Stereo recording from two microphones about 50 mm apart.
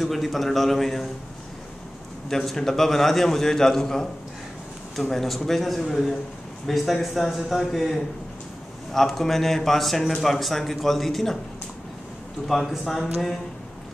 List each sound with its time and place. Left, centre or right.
0.0 s speech: centre
2.2 s a man's voice: centre
12.4 s speech: centre